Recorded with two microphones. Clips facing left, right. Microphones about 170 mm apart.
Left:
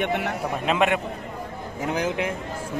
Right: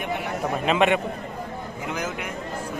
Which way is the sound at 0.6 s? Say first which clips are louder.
Right 1 dB; centre (ahead or behind).